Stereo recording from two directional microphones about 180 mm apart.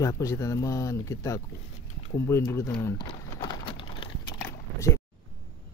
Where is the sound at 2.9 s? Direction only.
25° left (ahead or behind).